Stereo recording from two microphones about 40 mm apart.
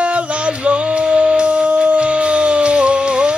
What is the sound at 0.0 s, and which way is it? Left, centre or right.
Music, right.